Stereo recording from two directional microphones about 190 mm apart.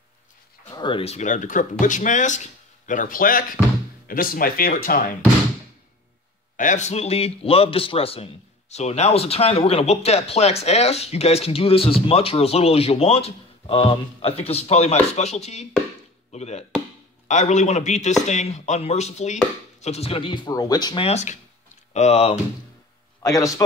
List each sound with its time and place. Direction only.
0.7 s a man's voice: 25° left (ahead or behind); by 5.1 s 50° left (ahead or behind)
6.5 s a man's voice: 40° left (ahead or behind)
23.2 s speech: 20° left (ahead or behind)